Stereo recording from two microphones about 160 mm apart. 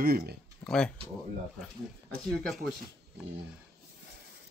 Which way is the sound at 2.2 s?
Centre (ahead or behind).